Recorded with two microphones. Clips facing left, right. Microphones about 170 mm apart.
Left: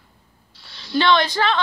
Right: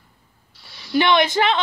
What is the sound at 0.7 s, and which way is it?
Speech, 15° right (ahead or behind).